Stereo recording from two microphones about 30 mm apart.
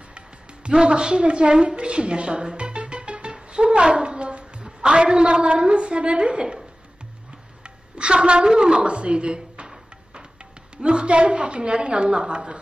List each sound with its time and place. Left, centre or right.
0.7 s a woman's voice: right
3.4 s a sound: right
4.6 s a woman's voice: right
7.6 s a sound: right
8.5 s a woman's voice: right
10.8 s a woman's voice: right